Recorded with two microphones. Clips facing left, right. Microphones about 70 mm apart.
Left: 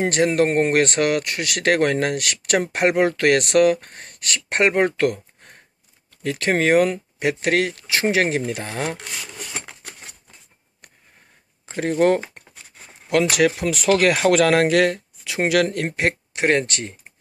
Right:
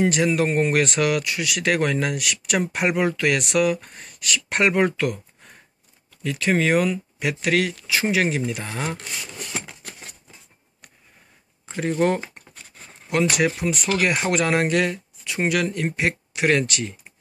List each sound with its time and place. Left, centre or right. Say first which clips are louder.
0.0 s speech: left 2 dB; left
4.9 s a sound: left 4 dB; left
6.2 s speech: left 2 dB; left
7.7 s speech: left 2 dB; left
13.1 s speech: left 3 dB; left
13.6 s speech: left 4 dB; left
16.3 s speech: even; left